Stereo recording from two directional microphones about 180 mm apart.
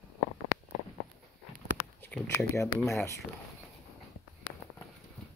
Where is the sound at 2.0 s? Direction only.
10° left (ahead or behind).